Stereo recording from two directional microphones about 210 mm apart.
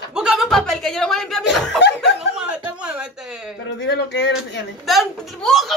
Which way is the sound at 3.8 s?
55° left (ahead or behind).